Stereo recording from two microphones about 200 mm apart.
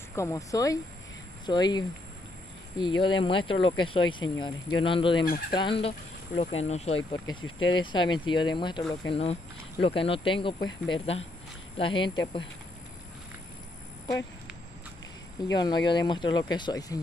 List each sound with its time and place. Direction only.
0.1 s speech: 15° left (ahead or behind)
15.4 s speech: 20° left (ahead or behind)